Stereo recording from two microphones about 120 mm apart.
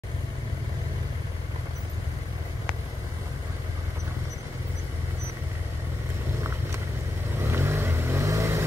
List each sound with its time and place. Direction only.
7.4 s vehicle: 20° right (ahead or behind)